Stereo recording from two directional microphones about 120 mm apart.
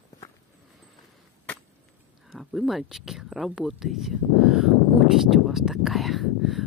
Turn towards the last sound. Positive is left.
turn(degrees=0)  # may be behind; listen again after turning